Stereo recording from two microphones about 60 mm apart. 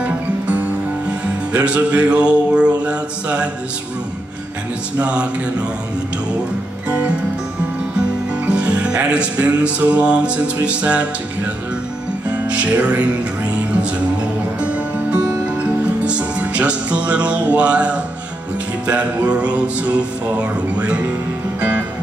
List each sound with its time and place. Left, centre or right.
0.0 s music: right
4.9 s music: centre
8.5 s music: centre
12.3 s music: right
14.6 s music: centre